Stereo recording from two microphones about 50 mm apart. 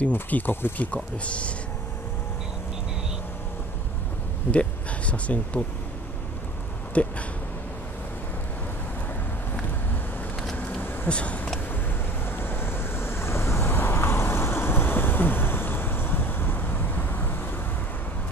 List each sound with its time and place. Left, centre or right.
0.5 s speech: left
0.7 s speech: left
4.5 s speech: left
6.9 s speech: left
10.5 s a sound: left
11.1 s speech: left
12.3 s vehicle: left